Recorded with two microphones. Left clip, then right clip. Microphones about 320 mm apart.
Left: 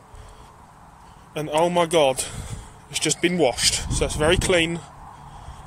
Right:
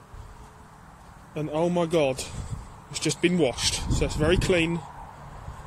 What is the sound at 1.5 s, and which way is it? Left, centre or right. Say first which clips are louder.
Speech: left 6 dB; left.